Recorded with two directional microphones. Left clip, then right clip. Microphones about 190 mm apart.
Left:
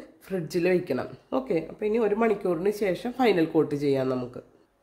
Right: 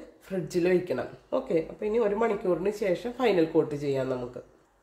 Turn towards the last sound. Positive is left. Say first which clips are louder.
# left 3 dB
turn(degrees=45)  # may be behind; listen again after turning